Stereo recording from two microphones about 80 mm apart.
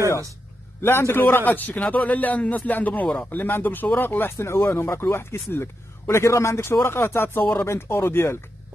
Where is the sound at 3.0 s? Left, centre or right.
Centre.